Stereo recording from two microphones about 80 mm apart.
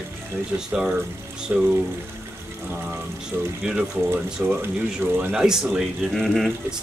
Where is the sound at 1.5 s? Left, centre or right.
Right.